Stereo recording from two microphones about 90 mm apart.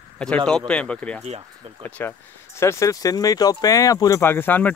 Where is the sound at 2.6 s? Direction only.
35° left (ahead or behind).